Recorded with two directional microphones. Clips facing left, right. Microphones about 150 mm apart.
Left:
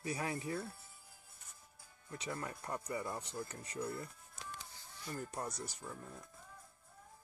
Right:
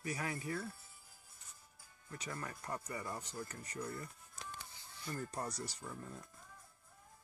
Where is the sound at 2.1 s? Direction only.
20° left (ahead or behind).